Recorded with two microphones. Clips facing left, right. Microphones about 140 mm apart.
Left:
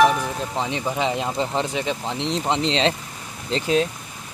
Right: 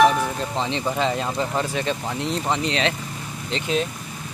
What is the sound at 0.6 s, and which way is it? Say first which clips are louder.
Speech: right 1 dB; 10° left (ahead or behind).